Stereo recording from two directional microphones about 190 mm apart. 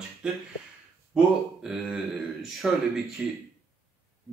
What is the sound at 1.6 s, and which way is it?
Speech, centre (ahead or behind).